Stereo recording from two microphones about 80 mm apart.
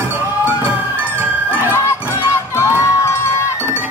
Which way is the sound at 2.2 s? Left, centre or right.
Left.